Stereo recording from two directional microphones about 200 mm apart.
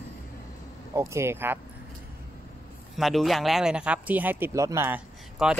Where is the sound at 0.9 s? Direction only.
15° right (ahead or behind).